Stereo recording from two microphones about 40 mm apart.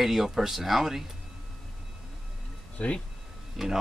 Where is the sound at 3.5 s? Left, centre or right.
Centre.